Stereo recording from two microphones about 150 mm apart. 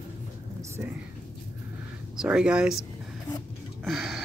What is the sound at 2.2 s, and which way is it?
Speech, 5° right (ahead or behind).